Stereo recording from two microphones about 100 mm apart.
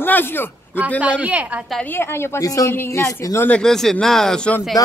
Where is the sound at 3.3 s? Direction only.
15° left (ahead or behind).